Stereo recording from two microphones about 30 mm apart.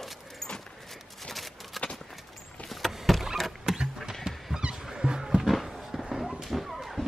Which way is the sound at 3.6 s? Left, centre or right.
Right.